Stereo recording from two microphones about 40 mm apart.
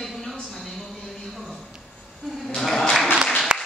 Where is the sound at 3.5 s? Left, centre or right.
Centre.